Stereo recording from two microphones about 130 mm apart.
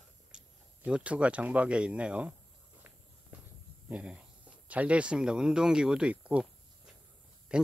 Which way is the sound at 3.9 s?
10° right (ahead or behind).